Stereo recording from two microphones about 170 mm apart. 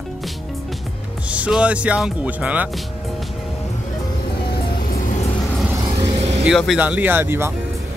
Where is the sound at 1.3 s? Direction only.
5° right (ahead or behind).